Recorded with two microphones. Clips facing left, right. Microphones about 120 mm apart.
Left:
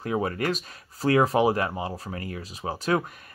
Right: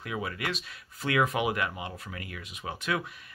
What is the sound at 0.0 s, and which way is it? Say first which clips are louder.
Speech: left 8 dB; 40° left (ahead or behind).